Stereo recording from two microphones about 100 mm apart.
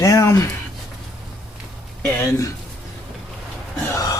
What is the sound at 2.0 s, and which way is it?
Speech, 25° left (ahead or behind).